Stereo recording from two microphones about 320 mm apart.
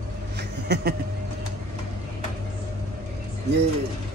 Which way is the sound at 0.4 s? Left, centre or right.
Right.